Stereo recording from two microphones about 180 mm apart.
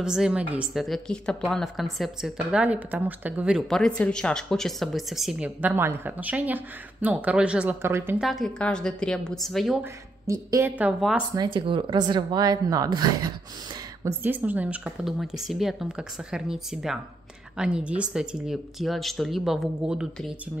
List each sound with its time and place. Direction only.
0.0 s speech: 5° right (ahead or behind)
8.2 s speech: centre (ahead or behind)
10.2 s a woman's voice: 15° right (ahead or behind)
11.3 s a woman's voice: 25° right (ahead or behind)
14.0 s speech: 10° right (ahead or behind)